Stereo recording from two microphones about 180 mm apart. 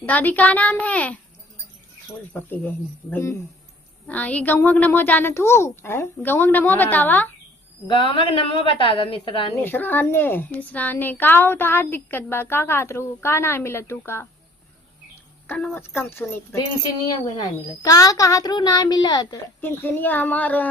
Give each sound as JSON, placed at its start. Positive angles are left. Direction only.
{"t": 0.0, "sound": "a woman's voice", "side_deg": 10}
{"t": 2.3, "sound": "a woman's voice", "side_deg": 10}
{"t": 7.8, "sound": "a woman's voice", "side_deg": 25}
{"t": 9.6, "sound": "a woman's voice", "side_deg": 10}
{"t": 15.4, "sound": "a woman's voice", "side_deg": 10}
{"t": 17.8, "sound": "a woman's voice", "side_deg": 20}
{"t": 19.6, "sound": "a woman's voice", "side_deg": 10}